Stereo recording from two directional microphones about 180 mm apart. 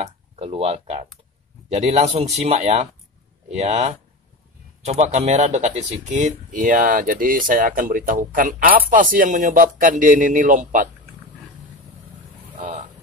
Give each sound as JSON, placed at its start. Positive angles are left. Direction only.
{"t": 0.0, "sound": "speech", "side_deg": -35}